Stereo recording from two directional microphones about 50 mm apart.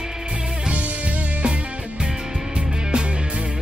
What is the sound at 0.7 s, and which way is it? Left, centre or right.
Music, right.